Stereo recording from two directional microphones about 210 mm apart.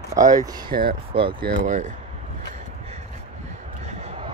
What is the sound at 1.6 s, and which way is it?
Speech, 35° right (ahead or behind).